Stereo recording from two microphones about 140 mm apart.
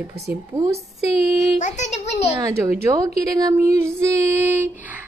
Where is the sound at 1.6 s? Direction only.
55° left (ahead or behind).